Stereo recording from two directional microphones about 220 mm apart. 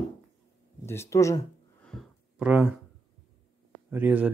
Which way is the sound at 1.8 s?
Centre (ahead or behind).